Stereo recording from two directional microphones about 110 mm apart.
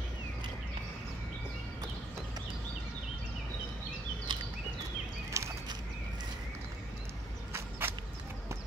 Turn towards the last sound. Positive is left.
turn(degrees=-20)  # may be behind; listen again after turning